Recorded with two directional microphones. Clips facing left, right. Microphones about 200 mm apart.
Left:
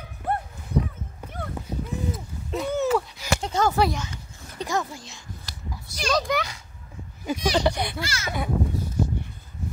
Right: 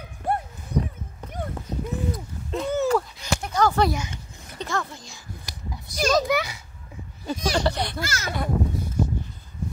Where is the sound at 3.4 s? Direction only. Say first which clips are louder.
Right 2 dB; 25° left (ahead or behind).